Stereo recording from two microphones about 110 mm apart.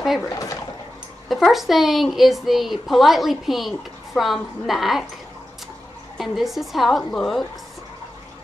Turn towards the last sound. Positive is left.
turn(degrees=5)  # may be behind; listen again after turning